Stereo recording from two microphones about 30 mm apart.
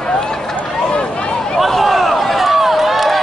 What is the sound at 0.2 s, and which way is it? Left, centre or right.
Run, centre.